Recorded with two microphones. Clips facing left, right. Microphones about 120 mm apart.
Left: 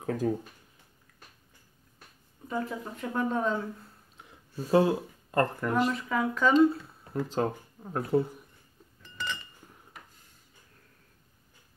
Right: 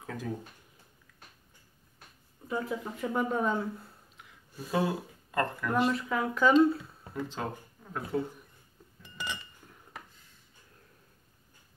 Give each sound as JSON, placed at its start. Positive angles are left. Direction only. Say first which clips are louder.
{"t": 0.0, "sound": "speech", "louder": "left 9 dB", "side_deg": 45}
{"t": 2.4, "sound": "speech", "louder": "even", "side_deg": -5}
{"t": 4.2, "sound": "a sound", "louder": "left 6 dB", "side_deg": 30}
{"t": 5.3, "sound": "speech", "louder": "left 3 dB", "side_deg": 40}
{"t": 5.9, "sound": "speech", "louder": "left 1 dB", "side_deg": 0}
{"t": 7.2, "sound": "speech", "louder": "left 7 dB", "side_deg": 40}
{"t": 9.0, "sound": "chink", "louder": "left 2 dB", "side_deg": -15}